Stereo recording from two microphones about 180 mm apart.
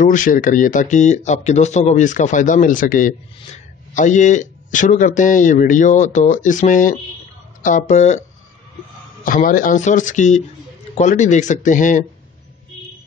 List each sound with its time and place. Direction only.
0.0 s speech: 45° left (ahead or behind)
9.2 s speech: 50° left (ahead or behind)